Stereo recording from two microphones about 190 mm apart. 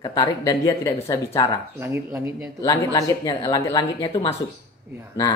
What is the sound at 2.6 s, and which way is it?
Speech, 15° left (ahead or behind).